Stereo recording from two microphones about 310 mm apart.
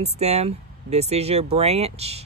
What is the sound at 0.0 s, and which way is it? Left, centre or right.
Speech, centre.